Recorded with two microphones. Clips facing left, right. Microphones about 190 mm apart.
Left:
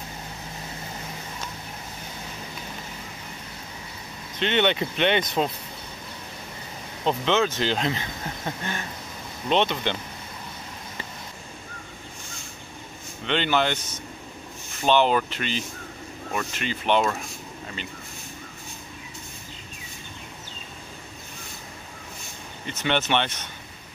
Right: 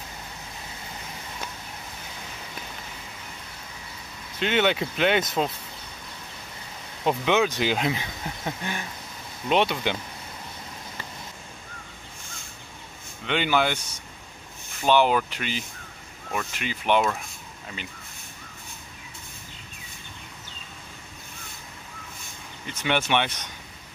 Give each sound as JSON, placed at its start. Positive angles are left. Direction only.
{"t": 4.4, "sound": "speech", "side_deg": -5}
{"t": 7.1, "sound": "speech", "side_deg": -15}
{"t": 13.3, "sound": "speech", "side_deg": -10}
{"t": 22.8, "sound": "speech", "side_deg": -10}